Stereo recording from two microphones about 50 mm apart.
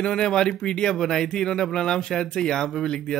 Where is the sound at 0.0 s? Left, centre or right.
Centre.